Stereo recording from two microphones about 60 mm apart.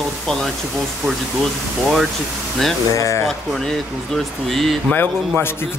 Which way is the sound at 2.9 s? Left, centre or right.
Left.